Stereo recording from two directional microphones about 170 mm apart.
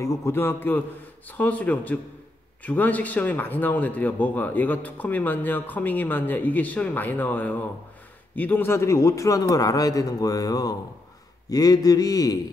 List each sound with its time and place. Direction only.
0.0 s a man's voice: 15° left (ahead or behind)